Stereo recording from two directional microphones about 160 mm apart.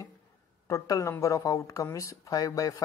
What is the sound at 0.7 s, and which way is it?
Speech, 20° left (ahead or behind).